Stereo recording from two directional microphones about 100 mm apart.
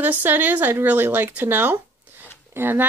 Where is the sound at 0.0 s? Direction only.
20° right (ahead or behind).